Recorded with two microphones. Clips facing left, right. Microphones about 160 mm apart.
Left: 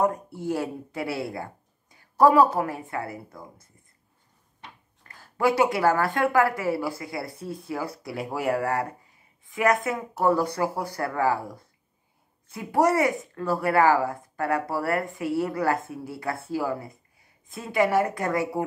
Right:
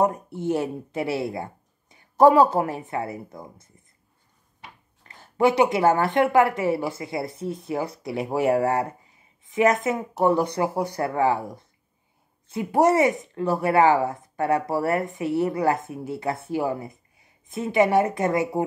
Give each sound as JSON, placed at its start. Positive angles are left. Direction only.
{"t": 0.0, "sound": "speech", "side_deg": -20}
{"t": 5.0, "sound": "speech", "side_deg": -20}